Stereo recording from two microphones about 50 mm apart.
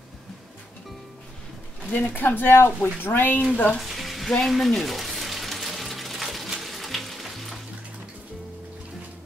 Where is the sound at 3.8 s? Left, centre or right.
Centre.